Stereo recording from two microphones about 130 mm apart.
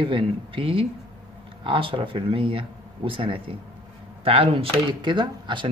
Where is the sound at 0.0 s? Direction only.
40° right (ahead or behind).